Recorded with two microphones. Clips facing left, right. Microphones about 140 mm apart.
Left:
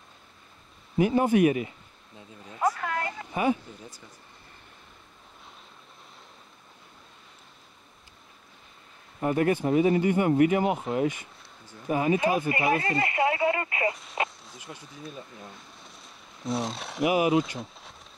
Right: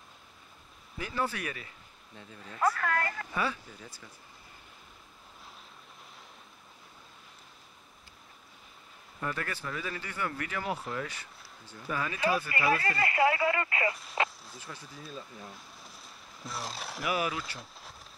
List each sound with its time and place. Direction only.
0.9 s speech: 20° left (ahead or behind)
9.2 s speech: 20° left (ahead or behind)
15.4 s a sound: centre (ahead or behind)
17.1 s speech: 20° left (ahead or behind)
17.6 s speech: centre (ahead or behind)